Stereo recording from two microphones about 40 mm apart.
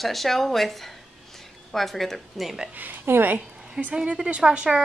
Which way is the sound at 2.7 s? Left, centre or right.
Right.